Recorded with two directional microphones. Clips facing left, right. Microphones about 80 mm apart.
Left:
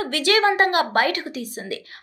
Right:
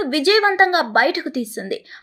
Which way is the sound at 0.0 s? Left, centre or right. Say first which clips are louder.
Right 3 dB; right.